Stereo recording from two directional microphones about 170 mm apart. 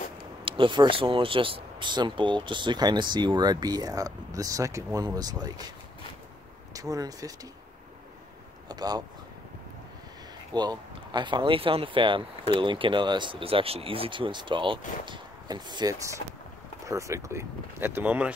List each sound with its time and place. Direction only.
0.5 s speech: 30° right (ahead or behind)
6.7 s speech: 20° right (ahead or behind)
8.6 s speech: 25° right (ahead or behind)
10.5 s speech: 25° right (ahead or behind)